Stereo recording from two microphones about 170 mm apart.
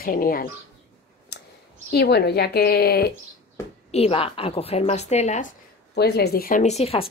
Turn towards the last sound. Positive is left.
turn(degrees=35)  # may be behind; listen again after turning